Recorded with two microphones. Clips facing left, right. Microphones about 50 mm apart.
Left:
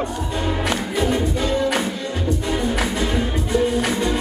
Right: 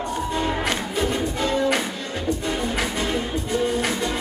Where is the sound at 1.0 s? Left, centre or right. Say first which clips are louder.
Left 3 dB; left.